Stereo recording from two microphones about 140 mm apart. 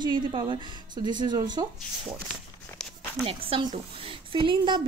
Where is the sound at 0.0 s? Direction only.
35° right (ahead or behind).